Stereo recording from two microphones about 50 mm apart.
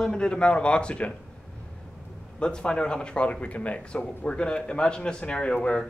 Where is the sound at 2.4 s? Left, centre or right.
Centre.